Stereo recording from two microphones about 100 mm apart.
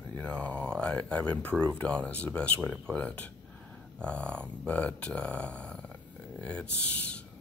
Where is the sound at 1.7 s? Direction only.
10° left (ahead or behind).